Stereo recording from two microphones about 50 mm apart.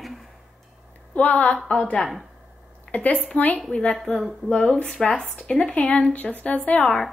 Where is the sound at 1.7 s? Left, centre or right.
Centre.